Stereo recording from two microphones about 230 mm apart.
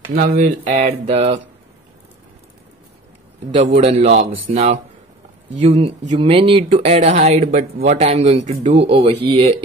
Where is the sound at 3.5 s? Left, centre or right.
Right.